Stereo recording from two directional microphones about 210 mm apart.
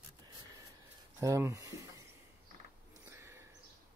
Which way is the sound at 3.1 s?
10° right (ahead or behind).